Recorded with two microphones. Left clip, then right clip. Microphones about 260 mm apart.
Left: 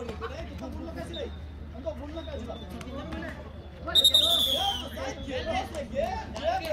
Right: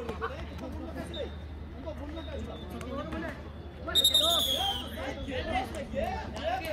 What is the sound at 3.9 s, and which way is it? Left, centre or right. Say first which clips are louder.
Speech: left 4 dB; centre.